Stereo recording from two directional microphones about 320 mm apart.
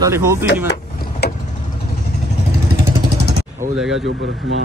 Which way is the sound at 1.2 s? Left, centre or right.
Left.